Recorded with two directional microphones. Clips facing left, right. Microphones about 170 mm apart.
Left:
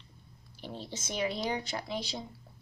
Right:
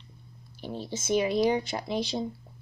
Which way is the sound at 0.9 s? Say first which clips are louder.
Right 9 dB; 25° right (ahead or behind).